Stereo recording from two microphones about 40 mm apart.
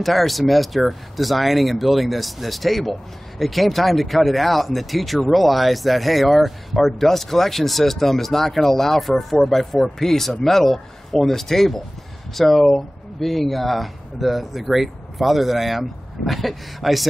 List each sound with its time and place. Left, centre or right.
0.0 s speech: centre